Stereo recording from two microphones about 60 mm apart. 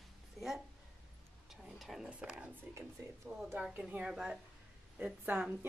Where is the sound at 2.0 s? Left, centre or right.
Centre.